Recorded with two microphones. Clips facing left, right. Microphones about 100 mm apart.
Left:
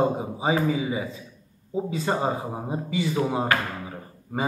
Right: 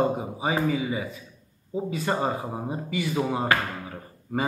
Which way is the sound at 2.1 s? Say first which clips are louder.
Even; 10° left (ahead or behind).